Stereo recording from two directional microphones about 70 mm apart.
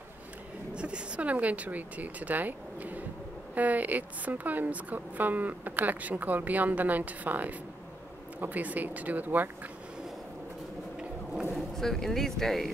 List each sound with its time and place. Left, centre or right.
0.7 s a woman's voice: centre
11.7 s speech: centre